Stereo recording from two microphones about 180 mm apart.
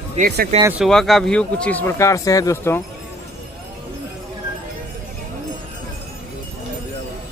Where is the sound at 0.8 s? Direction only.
Centre (ahead or behind).